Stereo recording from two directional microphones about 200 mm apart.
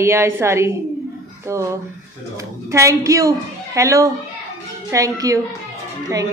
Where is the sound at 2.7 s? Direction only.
15° right (ahead or behind).